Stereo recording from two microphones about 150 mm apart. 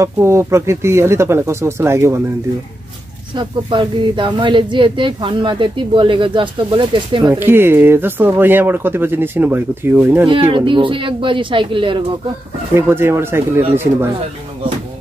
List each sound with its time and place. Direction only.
0.0 s speech: 20° right (ahead or behind)
3.3 s speech: 30° right (ahead or behind)
7.3 s speech: 15° right (ahead or behind)
10.2 s speech: 35° right (ahead or behind)
12.7 s speech: 15° right (ahead or behind)